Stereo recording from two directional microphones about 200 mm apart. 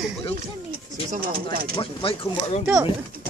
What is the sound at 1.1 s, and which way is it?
Speech, 45° right (ahead or behind).